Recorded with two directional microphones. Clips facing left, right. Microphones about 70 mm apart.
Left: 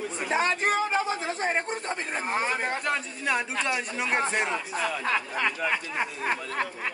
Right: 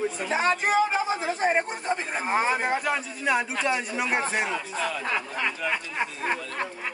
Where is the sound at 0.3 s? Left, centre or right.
Centre.